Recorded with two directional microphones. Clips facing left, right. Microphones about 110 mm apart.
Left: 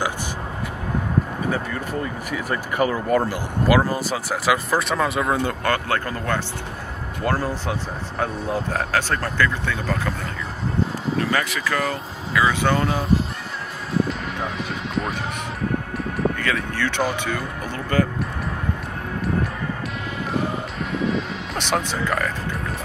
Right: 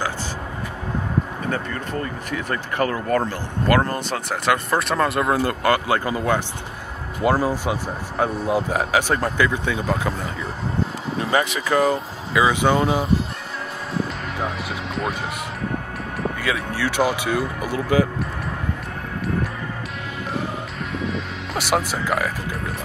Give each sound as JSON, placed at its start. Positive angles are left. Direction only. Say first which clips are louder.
{"t": 1.5, "sound": "speech", "louder": "even", "side_deg": 10}
{"t": 11.1, "sound": "speech", "louder": "right 3 dB", "side_deg": -20}
{"t": 16.2, "sound": "speech", "louder": "left 1 dB", "side_deg": -5}
{"t": 21.0, "sound": "music", "louder": "left 6 dB", "side_deg": -5}